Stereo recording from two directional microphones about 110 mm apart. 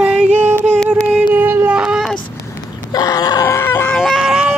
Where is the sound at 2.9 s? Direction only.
35° left (ahead or behind); by 4.0 s 20° left (ahead or behind).